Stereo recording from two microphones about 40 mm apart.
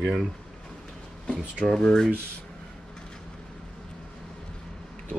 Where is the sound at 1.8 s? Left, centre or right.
Centre.